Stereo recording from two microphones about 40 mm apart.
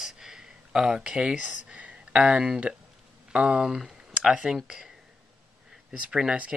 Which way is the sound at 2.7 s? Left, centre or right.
Right.